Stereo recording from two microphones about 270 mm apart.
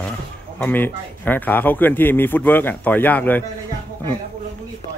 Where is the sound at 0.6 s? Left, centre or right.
Centre.